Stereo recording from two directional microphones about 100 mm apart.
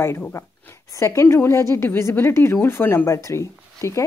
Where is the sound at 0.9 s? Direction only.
30° left (ahead or behind).